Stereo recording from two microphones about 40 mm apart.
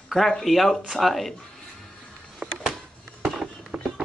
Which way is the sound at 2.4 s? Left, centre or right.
Right.